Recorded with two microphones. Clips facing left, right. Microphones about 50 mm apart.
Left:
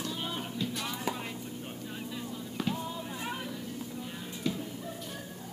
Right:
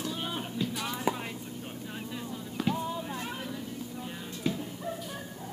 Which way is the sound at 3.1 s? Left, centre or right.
Centre.